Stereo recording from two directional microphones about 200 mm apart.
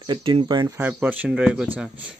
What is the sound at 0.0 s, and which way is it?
Speech, 25° right (ahead or behind).